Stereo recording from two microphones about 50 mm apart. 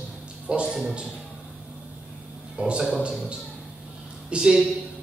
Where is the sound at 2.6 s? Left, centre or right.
Right.